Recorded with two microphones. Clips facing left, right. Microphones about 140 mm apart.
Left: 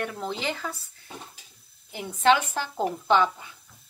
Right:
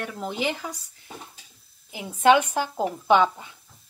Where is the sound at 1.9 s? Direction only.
5° right (ahead or behind).